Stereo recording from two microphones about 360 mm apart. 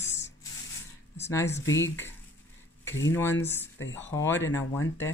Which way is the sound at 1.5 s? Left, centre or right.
Left.